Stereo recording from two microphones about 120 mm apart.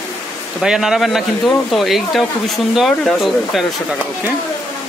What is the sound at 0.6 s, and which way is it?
Speech, 5° right (ahead or behind).